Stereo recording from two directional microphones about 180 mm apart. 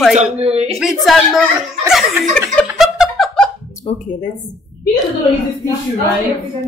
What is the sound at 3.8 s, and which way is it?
Speech, 45° left (ahead or behind).